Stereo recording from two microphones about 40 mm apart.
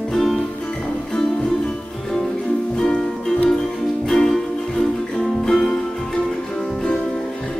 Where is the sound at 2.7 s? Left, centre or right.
Left.